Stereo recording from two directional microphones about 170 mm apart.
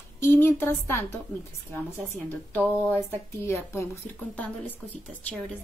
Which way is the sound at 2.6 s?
10° right (ahead or behind).